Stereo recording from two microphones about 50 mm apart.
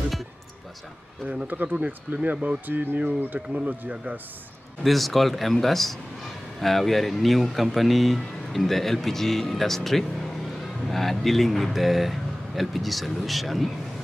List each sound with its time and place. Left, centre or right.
1.3 s speech: right
3.3 s speech: right
4.8 s speech: centre